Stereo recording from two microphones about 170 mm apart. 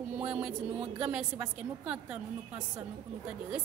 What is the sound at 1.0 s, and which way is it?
Speech, 5° right (ahead or behind).